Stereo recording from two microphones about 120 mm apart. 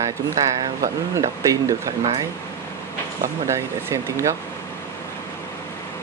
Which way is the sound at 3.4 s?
25° right (ahead or behind).